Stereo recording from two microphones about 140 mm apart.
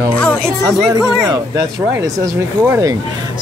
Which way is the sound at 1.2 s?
25° right (ahead or behind).